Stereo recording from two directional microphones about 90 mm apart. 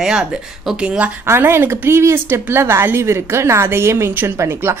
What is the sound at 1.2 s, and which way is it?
A woman's voice, 25° right (ahead or behind).